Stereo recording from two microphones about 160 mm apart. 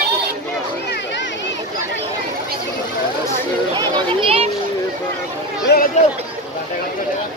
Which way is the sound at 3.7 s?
30° right (ahead or behind).